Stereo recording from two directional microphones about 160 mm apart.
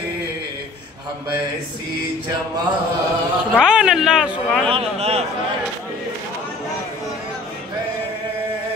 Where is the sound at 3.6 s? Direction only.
5° right (ahead or behind).